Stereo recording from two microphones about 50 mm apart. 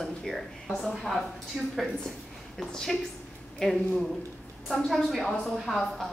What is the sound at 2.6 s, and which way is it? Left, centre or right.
A woman's voice, centre.